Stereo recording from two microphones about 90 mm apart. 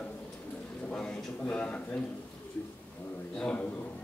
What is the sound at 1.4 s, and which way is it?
Speech, 15° left (ahead or behind).